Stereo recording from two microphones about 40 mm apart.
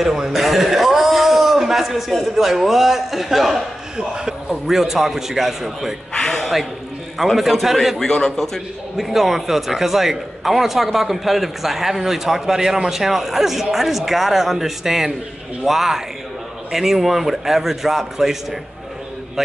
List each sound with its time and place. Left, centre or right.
0.0 s a man's voice: centre
3.9 s a man's voice: centre
6.1 s a sound: centre
6.4 s a man's voice: centre
8.0 s a man's voice: centre
8.9 s a man's voice: centre